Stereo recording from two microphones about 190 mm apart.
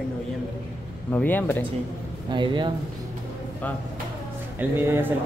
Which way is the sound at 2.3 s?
25° right (ahead or behind).